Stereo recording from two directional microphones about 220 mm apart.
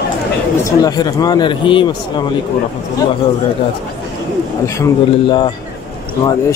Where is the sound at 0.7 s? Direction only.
15° left (ahead or behind).